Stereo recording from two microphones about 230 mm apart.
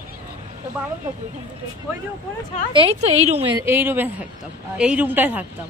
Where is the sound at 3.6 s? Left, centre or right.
Centre.